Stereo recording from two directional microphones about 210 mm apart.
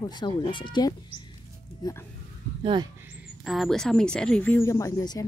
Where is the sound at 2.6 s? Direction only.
20° right (ahead or behind).